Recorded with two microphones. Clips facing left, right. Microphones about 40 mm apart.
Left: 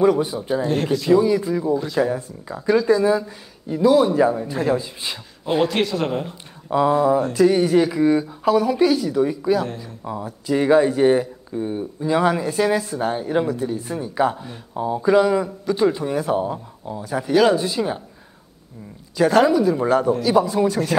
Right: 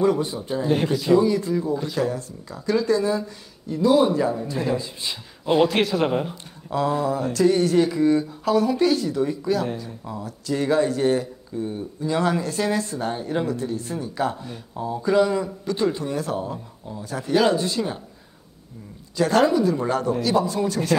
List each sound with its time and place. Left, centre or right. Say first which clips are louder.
0.9 s a man's voice: left 3 dB; centre
1.2 s speech: left 2 dB; centre
2.0 s a man's voice: left 4 dB; centre
6.7 s speech: left 6 dB; centre
17.3 s speech: left 3 dB; centre
19.1 s speech: left 3 dB; centre